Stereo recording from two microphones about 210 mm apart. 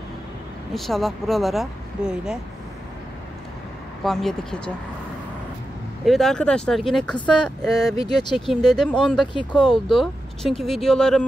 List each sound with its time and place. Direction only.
0.7 s speech: centre (ahead or behind)
4.0 s speech: centre (ahead or behind)
6.0 s speech: centre (ahead or behind)
8.2 s speech: 20° left (ahead or behind)
8.5 s speech: centre (ahead or behind)
9.2 s speech: 20° left (ahead or behind)
9.8 s speech: centre (ahead or behind)